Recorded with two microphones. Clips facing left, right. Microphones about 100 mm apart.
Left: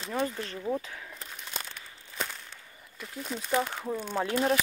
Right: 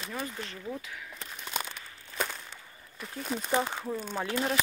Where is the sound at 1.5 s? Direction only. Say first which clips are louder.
Right 6 dB; 10° right (ahead or behind).